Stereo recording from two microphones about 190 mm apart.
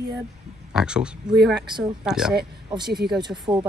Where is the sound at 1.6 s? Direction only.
25° right (ahead or behind).